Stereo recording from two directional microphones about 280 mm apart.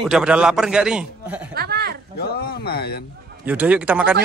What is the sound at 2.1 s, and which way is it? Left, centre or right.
Speech, left.